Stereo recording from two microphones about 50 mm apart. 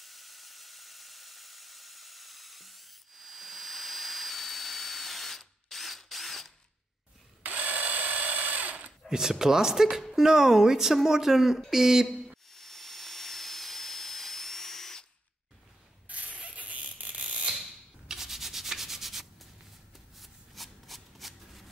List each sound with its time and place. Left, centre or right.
0.0 s a sound: centre
7.4 s drill: right
9.1 s speech: centre
12.4 s steam: centre
16.1 s a sound: right
18.0 s rub: centre
20.2 s shuffling cards: centre